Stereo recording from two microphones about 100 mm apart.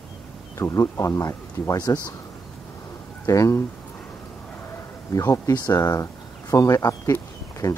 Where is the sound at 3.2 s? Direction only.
30° left (ahead or behind).